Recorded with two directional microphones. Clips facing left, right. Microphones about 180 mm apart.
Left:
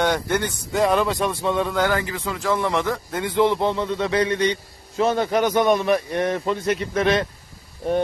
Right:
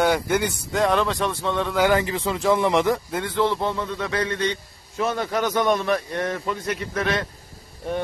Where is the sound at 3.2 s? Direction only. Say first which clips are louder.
Left 6 dB; 15° left (ahead or behind).